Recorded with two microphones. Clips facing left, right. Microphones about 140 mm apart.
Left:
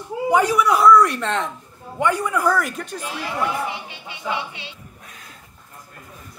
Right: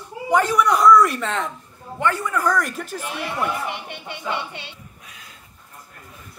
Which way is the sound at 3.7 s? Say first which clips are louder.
Right 1 dB; 55° right (ahead or behind).